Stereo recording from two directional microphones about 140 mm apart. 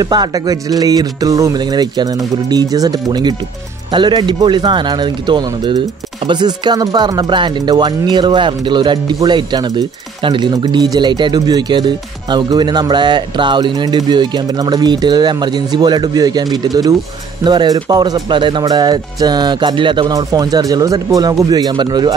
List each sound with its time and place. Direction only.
0.0 s speech: 30° right (ahead or behind)